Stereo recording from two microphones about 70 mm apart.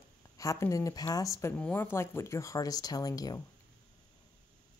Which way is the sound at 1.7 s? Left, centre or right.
Left.